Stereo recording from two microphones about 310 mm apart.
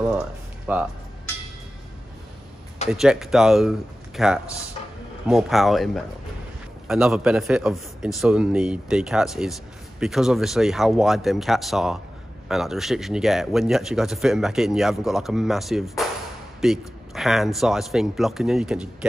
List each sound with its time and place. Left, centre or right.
0.7 s a man's voice: centre
2.9 s a man's voice: centre